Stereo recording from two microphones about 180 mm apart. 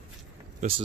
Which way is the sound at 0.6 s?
40° right (ahead or behind).